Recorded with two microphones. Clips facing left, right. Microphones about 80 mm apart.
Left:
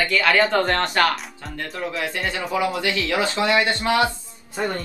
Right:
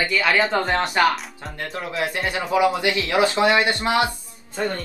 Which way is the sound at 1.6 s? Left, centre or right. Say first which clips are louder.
Even; right.